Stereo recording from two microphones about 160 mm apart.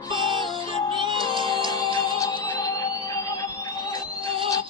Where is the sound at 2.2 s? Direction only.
20° left (ahead or behind).